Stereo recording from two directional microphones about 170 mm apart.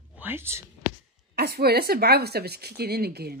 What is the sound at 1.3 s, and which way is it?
Speech, 65° right (ahead or behind).